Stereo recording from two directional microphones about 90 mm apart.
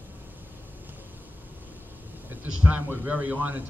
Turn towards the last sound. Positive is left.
turn(degrees=-20)  # may be behind; listen again after turning